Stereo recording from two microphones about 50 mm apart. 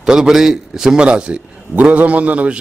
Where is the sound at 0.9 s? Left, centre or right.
Right.